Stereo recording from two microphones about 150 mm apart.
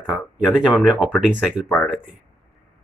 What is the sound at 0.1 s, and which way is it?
Speech, 5° right (ahead or behind).